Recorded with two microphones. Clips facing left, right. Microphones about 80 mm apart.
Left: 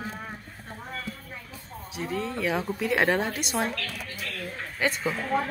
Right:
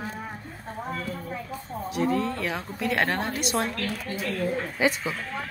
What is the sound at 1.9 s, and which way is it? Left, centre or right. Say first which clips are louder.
A woman's voice: right 6 dB; centre.